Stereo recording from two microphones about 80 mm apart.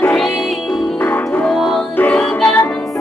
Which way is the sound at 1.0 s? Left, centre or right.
Left.